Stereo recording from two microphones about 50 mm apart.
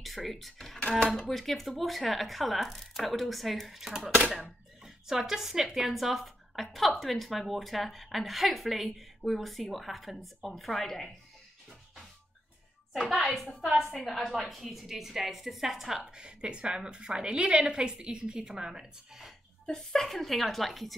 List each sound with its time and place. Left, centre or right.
0.0 s speech: centre
0.7 s dishes: left
1.3 s speech: centre
13.1 s a woman's voice: centre
19.6 s speech: centre